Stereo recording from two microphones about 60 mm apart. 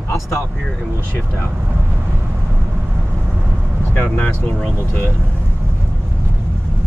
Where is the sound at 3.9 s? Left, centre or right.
Left.